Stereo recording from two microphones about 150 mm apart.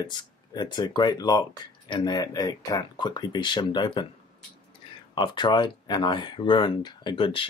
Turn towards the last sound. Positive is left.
turn(degrees=35)  # may be behind; listen again after turning